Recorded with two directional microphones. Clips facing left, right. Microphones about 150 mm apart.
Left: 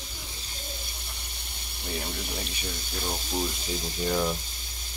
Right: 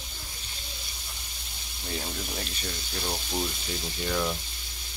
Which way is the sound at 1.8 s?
5° left (ahead or behind).